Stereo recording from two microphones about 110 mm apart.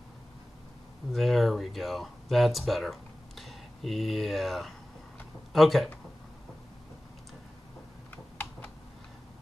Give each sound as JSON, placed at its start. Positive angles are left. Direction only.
{"t": 1.1, "sound": "speech", "side_deg": 0}